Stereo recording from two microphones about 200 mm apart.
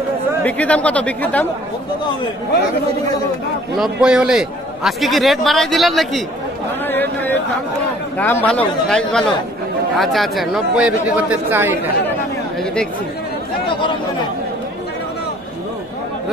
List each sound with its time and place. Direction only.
0.4 s speech: 5° left (ahead or behind)
3.7 s a man's voice: centre (ahead or behind)
13.7 s chatter: 25° left (ahead or behind)